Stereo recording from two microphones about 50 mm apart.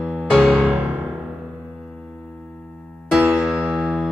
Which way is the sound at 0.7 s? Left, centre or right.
Right.